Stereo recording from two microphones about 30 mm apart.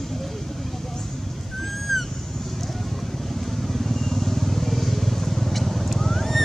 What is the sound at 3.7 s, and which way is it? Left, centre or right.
Vehicle, centre.